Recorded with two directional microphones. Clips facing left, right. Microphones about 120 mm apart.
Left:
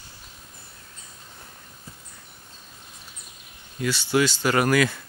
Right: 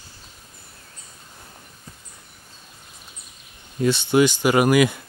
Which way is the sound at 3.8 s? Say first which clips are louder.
Right 5 dB; 20° right (ahead or behind).